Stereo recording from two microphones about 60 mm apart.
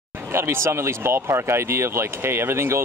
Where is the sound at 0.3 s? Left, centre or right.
Right.